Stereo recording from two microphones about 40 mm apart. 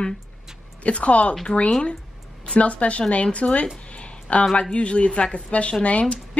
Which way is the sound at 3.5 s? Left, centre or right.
Left.